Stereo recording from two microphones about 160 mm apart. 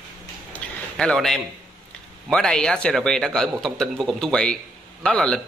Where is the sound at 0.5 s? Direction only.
5° left (ahead or behind).